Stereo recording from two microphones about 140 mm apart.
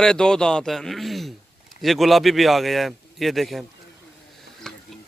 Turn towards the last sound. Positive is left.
turn(degrees=5)  # may be behind; listen again after turning